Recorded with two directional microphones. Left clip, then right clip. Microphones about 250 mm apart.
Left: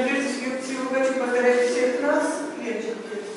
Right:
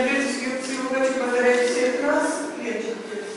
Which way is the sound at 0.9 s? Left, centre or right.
Centre.